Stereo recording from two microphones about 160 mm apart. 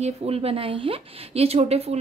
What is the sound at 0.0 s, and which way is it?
Speech, 40° right (ahead or behind).